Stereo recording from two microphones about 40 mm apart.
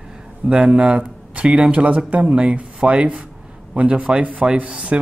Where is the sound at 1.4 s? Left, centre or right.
Centre.